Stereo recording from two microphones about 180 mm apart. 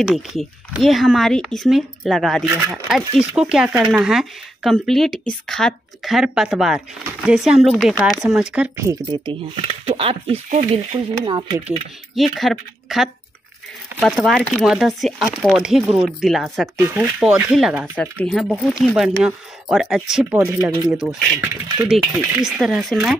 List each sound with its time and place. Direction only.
0.0 s speech: centre (ahead or behind)
8.7 s speech: 20° right (ahead or behind)
9.8 s speech: 30° right (ahead or behind)
12.2 s speech: centre (ahead or behind)
16.7 s speech: 10° right (ahead or behind)
17.9 s speech: 5° left (ahead or behind)
21.4 s speech: 20° right (ahead or behind)
21.8 s speech: 5° right (ahead or behind)